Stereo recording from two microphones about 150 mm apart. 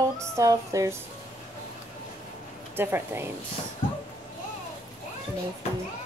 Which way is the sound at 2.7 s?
15° right (ahead or behind).